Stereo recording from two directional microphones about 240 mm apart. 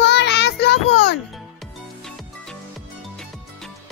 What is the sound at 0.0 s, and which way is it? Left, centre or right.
Child singing, left.